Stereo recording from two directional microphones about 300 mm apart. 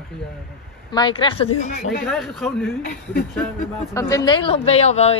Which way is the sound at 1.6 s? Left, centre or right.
Left.